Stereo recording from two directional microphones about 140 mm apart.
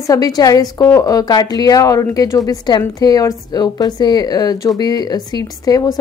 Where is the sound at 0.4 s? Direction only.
25° left (ahead or behind).